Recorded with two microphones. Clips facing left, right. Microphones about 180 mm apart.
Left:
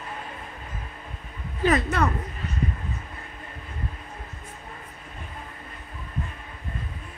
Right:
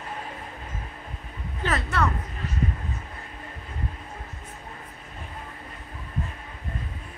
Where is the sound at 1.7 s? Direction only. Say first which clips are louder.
Left 5 dB; 20° left (ahead or behind).